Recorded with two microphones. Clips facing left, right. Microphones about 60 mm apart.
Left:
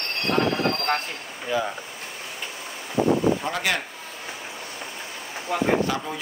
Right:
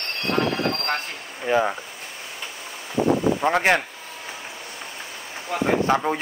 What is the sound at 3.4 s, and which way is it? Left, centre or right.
Speech, right.